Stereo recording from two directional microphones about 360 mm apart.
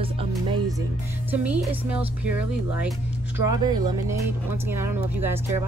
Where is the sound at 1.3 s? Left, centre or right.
Centre.